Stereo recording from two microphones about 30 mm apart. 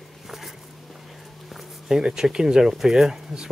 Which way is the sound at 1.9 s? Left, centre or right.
Right.